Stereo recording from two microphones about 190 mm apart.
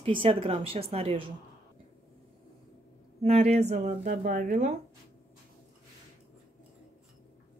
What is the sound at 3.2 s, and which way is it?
Speech, 35° right (ahead or behind).